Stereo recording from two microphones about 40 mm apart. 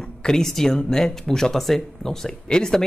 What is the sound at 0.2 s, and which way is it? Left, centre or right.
Speech, centre.